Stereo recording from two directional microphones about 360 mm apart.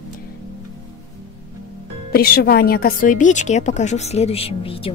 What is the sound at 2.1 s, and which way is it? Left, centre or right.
A woman's voice, left.